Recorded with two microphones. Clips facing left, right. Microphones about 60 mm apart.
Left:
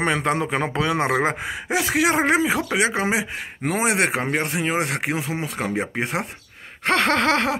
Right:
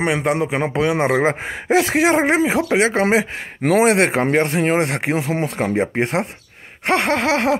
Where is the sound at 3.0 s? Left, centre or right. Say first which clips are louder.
Right 6 dB; right.